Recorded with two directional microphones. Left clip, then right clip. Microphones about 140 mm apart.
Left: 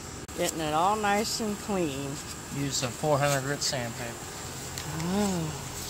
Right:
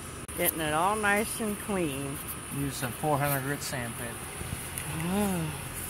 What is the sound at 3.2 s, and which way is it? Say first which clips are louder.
Speech: left 4 dB; 55° left (ahead or behind).